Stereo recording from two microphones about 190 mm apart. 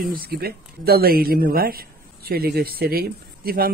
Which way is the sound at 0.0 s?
50° right (ahead or behind).